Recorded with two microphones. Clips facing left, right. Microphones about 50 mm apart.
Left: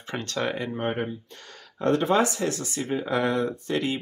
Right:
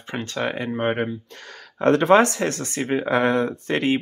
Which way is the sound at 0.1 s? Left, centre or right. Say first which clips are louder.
Right 2 dB; centre.